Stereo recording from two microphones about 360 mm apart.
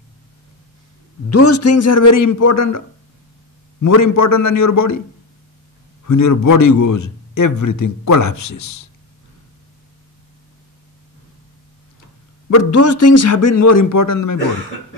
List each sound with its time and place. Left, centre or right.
1.3 s a man's voice: left
3.8 s a man's voice: left
6.0 s a man's voice: left
12.4 s a man's voice: left